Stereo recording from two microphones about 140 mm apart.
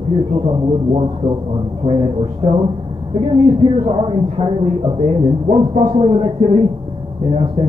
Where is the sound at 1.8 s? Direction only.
40° right (ahead or behind).